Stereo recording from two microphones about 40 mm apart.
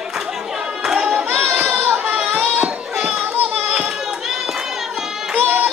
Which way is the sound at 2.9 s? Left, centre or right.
Right.